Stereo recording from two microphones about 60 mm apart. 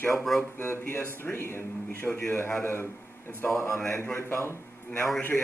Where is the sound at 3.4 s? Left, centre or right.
Left.